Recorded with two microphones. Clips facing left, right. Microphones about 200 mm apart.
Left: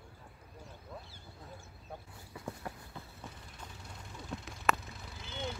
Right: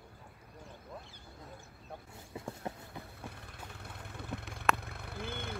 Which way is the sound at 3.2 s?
60° right (ahead or behind).